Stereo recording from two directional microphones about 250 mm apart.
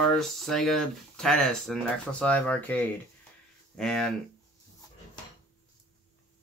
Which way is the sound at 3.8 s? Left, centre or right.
Centre.